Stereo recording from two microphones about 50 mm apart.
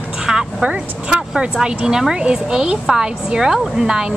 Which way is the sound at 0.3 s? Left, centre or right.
Centre.